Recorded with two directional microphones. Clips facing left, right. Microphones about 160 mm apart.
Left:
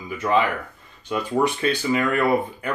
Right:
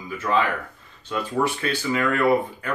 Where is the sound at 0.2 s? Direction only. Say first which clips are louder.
Left 2 dB; 25° left (ahead or behind).